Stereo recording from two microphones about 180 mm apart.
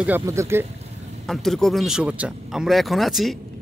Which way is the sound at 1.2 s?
Centre (ahead or behind).